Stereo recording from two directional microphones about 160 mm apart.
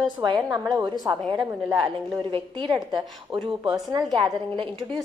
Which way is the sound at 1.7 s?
25° right (ahead or behind).